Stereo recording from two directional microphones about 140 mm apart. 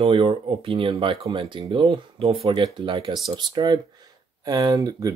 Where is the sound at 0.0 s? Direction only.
40° right (ahead or behind).